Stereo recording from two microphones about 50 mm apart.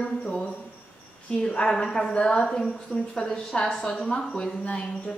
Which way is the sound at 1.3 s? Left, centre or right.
Centre.